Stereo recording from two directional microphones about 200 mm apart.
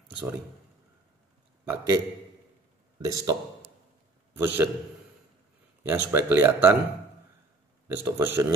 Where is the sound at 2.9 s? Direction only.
15° right (ahead or behind).